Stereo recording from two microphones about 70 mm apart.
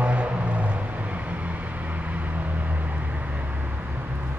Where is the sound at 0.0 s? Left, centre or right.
Centre.